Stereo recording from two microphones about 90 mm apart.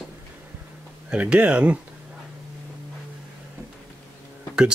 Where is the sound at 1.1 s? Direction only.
10° right (ahead or behind).